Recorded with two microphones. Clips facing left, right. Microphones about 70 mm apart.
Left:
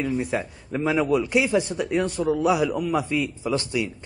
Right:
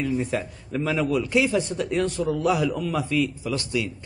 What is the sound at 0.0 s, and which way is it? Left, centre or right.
A man's voice, centre.